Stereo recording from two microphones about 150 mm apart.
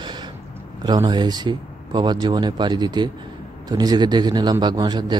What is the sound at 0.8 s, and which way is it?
Speech, 30° right (ahead or behind).